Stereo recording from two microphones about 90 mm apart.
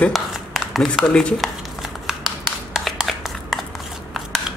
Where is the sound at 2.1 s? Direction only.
5° right (ahead or behind).